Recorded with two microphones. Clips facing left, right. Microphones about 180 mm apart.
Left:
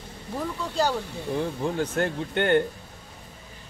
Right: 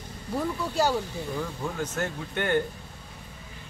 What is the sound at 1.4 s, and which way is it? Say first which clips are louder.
Speech: left 8 dB; 30° left (ahead or behind).